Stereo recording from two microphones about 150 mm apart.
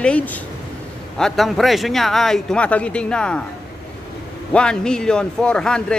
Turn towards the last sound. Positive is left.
turn(degrees=5)  # may be behind; listen again after turning